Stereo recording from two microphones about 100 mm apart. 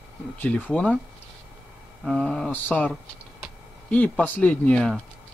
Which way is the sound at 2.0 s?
5° left (ahead or behind).